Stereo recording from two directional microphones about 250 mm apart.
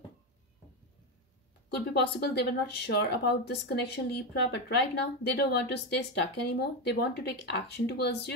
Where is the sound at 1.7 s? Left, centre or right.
Left.